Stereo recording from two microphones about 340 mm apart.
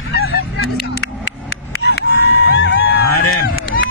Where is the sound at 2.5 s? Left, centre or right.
Left.